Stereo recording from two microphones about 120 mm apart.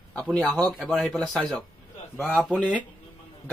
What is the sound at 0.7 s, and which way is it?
Speech, centre (ahead or behind).